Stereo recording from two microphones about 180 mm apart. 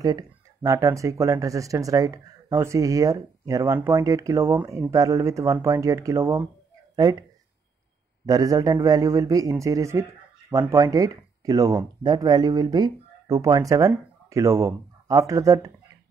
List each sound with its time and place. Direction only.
0.0 s speech: 20° right (ahead or behind)
8.3 s speech: 20° right (ahead or behind)